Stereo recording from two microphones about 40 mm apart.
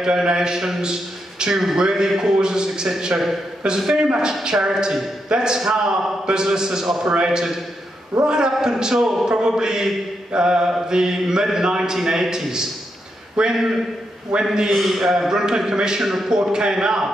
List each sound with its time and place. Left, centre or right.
0.0 s a man's voice: centre
4.3 s a man's voice: centre
14.7 s a man's voice: centre